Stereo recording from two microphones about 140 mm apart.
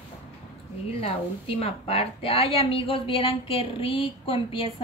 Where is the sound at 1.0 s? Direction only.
45° left (ahead or behind).